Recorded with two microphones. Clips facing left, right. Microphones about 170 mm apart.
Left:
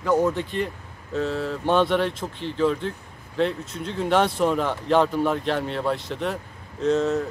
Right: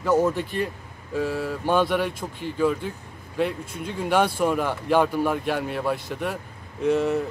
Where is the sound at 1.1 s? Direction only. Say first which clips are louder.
Even; 10° right (ahead or behind).